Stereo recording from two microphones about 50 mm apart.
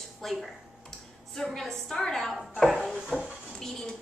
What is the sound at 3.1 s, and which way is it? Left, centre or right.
Speech, right.